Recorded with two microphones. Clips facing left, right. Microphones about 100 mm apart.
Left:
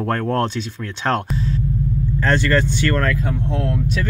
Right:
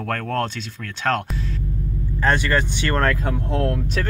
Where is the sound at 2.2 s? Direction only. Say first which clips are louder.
Left 2 dB; 15° right (ahead or behind).